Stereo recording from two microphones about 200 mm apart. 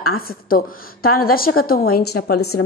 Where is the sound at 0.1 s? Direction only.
45° left (ahead or behind).